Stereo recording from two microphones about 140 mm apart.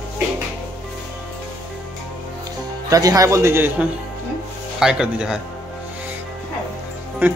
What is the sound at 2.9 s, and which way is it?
A man's voice, 25° right (ahead or behind).